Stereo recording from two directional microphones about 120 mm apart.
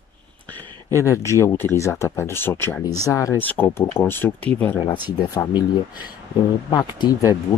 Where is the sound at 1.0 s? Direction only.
25° left (ahead or behind).